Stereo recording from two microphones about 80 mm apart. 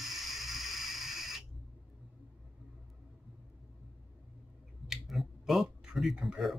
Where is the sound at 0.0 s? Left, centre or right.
Centre.